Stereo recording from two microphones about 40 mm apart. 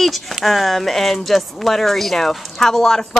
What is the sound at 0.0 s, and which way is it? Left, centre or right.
Speech, centre.